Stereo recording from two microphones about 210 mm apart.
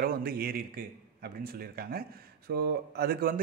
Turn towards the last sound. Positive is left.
turn(degrees=-45)  # may be behind; listen again after turning